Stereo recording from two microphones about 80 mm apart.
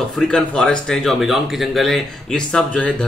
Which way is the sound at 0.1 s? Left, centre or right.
Centre.